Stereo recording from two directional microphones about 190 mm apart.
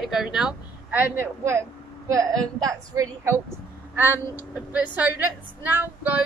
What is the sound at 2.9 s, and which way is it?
Male singing, 20° right (ahead or behind).